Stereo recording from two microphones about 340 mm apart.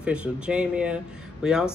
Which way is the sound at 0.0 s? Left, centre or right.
Centre.